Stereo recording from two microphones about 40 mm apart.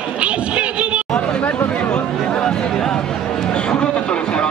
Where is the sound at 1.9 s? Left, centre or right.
Left.